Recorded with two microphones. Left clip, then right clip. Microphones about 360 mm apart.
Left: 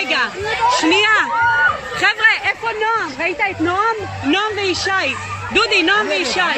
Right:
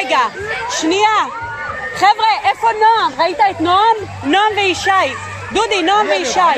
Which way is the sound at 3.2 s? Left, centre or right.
Right.